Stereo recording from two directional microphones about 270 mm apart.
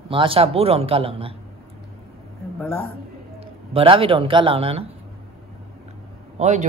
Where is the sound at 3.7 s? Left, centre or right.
Centre.